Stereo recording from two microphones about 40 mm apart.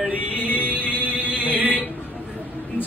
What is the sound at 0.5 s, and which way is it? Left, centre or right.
Music, left.